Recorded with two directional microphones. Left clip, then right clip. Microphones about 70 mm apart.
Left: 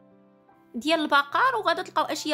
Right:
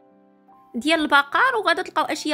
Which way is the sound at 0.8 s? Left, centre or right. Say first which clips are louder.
Right 4 dB; right.